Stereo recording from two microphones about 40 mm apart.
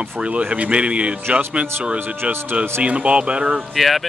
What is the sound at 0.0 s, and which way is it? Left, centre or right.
Speech, right.